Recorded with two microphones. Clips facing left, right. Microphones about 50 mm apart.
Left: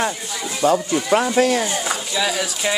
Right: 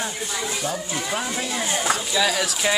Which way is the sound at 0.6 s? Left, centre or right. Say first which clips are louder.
Left 15 dB; left.